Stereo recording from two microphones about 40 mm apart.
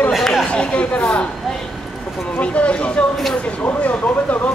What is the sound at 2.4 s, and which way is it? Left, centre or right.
Speech, left.